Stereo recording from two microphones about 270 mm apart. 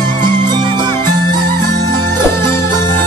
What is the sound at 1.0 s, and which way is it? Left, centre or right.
Music, left.